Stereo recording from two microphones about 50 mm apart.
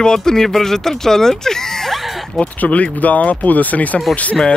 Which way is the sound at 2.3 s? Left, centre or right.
Left.